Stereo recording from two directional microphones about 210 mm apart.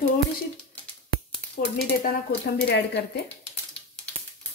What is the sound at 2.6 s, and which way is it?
Speech, 55° left (ahead or behind).